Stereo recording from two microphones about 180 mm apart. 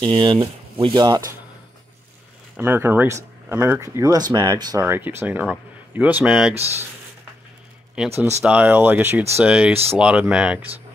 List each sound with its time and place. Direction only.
0.0 s speech: 25° right (ahead or behind)
2.5 s speech: 10° right (ahead or behind)
6.5 s speech: 35° right (ahead or behind)
8.0 s speech: 5° right (ahead or behind)